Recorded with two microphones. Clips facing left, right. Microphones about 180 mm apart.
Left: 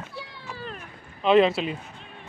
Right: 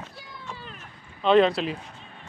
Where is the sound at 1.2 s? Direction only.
5° left (ahead or behind).